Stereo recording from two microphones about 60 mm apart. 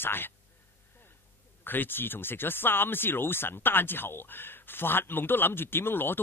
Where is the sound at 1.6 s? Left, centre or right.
Left.